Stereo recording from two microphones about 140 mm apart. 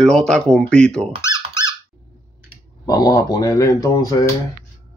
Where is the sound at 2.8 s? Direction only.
25° left (ahead or behind).